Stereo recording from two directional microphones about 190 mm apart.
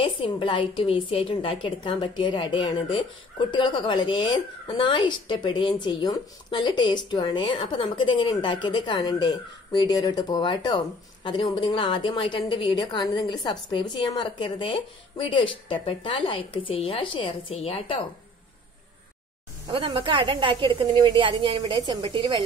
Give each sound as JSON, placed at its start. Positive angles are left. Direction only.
{"t": 0.0, "sound": "a woman's voice", "side_deg": 25}
{"t": 19.7, "sound": "a woman's voice", "side_deg": -25}